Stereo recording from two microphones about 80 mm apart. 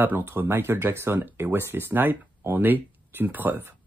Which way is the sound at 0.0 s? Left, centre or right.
Right.